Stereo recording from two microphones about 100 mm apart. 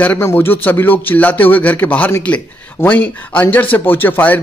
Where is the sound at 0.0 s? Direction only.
20° left (ahead or behind).